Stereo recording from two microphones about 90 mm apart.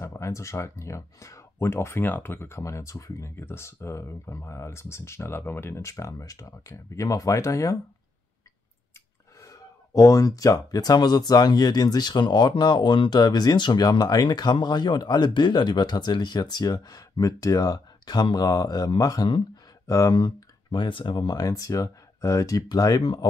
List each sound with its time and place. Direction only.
0.0 s speech: 35° left (ahead or behind)
9.4 s speech: 35° left (ahead or behind)
19.2 s speech: 55° left (ahead or behind)
19.9 s speech: 40° left (ahead or behind)